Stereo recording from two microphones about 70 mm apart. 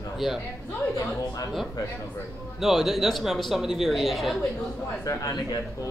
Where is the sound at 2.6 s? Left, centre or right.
Centre.